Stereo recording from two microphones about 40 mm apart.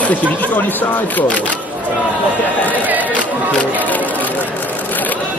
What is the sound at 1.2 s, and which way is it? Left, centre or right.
Speech, left.